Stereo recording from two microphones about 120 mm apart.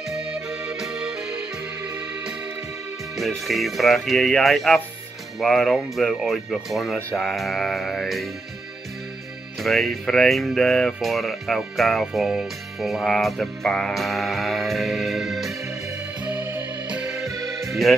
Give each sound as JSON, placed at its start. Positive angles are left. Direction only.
{"t": 0.1, "sound": "music", "side_deg": -5}
{"t": 3.2, "sound": "speech", "side_deg": 0}
{"t": 9.6, "sound": "speech", "side_deg": 0}
{"t": 16.3, "sound": "music", "side_deg": -10}